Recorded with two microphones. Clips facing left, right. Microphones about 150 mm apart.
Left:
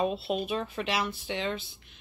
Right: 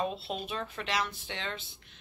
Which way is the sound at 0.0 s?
10° left (ahead or behind).